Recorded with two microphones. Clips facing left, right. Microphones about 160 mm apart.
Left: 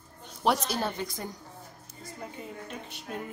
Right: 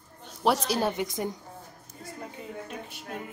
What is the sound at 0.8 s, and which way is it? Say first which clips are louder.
Speech: right 5 dB; 15° right (ahead or behind).